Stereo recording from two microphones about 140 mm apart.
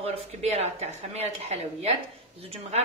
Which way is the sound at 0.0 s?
50° right (ahead or behind).